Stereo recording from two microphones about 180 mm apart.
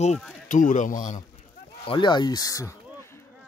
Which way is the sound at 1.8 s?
30° left (ahead or behind).